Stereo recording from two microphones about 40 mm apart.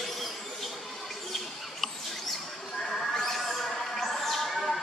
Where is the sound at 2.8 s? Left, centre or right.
Centre.